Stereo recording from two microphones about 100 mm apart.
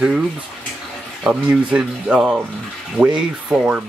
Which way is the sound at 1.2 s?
10° right (ahead or behind).